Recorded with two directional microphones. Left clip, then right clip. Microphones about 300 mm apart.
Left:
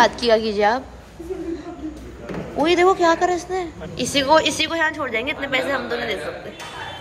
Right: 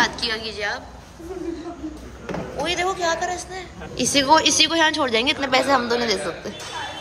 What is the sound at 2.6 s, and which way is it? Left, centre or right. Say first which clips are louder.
A woman's voice: left 7 dB; centre.